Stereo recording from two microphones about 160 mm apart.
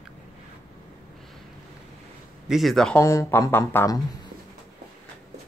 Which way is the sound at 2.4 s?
Centre (ahead or behind).